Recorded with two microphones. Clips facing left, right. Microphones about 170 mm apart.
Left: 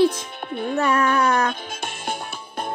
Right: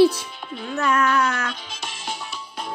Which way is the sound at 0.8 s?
30° left (ahead or behind).